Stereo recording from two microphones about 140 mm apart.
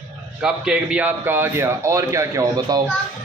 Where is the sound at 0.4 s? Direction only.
5° right (ahead or behind); by 2.8 s 25° right (ahead or behind).